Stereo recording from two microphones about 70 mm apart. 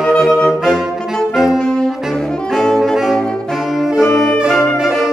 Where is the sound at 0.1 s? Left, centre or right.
Centre.